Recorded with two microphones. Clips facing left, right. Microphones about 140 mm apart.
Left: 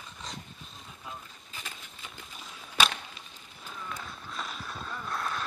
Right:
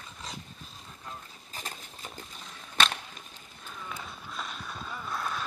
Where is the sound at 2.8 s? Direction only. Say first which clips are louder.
Even; 10° left (ahead or behind).